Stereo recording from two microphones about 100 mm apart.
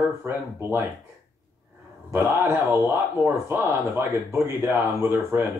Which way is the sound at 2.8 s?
25° right (ahead or behind).